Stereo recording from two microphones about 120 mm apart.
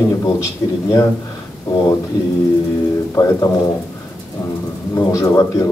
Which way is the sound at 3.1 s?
25° left (ahead or behind).